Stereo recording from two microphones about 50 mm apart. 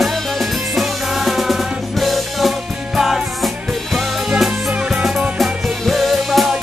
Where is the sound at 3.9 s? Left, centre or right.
Centre.